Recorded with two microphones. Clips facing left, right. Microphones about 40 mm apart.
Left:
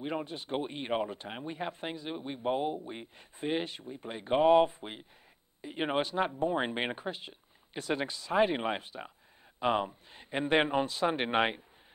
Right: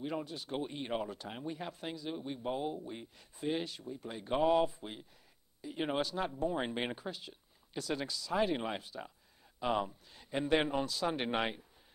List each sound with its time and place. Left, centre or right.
0.0 s speech: left